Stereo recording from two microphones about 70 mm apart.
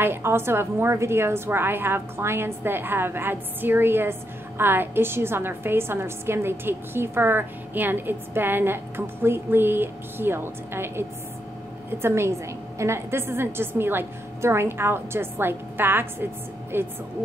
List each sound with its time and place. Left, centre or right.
0.0 s a woman's voice: right